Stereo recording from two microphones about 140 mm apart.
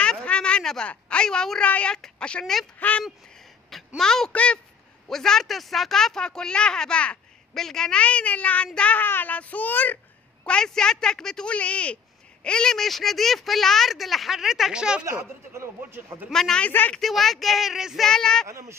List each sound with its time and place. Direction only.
0.0 s a woman's voice: 10° left (ahead or behind)
15.0 s a man's voice: 20° right (ahead or behind)
16.3 s speech: 5° left (ahead or behind)
17.0 s speech: centre (ahead or behind)
18.5 s a man's voice: 20° right (ahead or behind)